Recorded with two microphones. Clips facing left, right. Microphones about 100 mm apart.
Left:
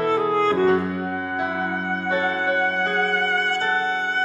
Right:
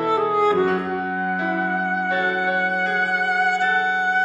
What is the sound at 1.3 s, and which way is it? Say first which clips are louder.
Music: right 4 dB; 20° left (ahead or behind).